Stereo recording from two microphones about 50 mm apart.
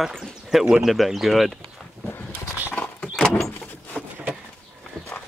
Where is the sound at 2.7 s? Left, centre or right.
Left.